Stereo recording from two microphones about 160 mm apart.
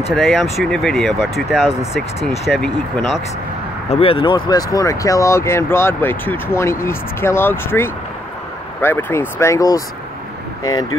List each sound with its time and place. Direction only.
0.1 s speech: centre (ahead or behind)
3.9 s speech: 35° left (ahead or behind)